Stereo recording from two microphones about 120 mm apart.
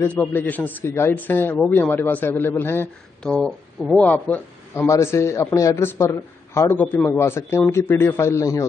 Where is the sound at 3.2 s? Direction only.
5° left (ahead or behind).